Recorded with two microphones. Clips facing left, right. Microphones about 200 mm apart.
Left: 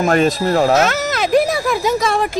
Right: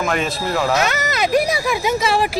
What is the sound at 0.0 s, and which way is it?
Speech, 40° left (ahead or behind).